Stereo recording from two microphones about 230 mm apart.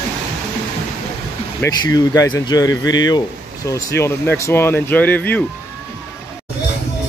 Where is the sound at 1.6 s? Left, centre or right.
Centre.